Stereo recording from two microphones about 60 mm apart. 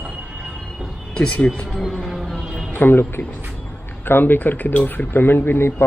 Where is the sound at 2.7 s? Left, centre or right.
Left.